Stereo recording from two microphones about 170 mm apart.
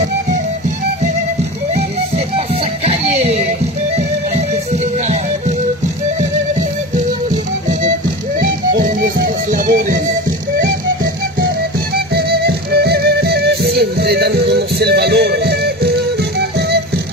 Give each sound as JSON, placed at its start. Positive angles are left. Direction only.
{"t": 1.8, "sound": "music", "side_deg": -40}
{"t": 8.7, "sound": "music", "side_deg": -55}
{"t": 12.1, "sound": "music", "side_deg": -70}